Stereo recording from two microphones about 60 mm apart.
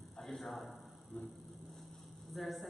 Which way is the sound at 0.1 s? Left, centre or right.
Centre.